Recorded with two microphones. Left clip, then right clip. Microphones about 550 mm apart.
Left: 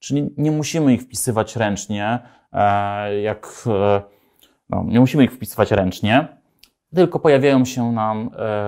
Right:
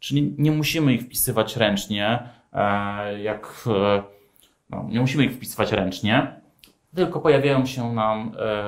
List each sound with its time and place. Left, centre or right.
0.0 s speech: left
4.6 s speech: left
6.9 s speech: left